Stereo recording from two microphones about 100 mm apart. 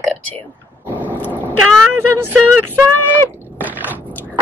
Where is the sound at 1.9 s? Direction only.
20° right (ahead or behind).